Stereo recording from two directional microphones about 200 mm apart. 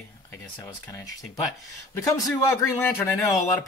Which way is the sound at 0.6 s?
15° left (ahead or behind).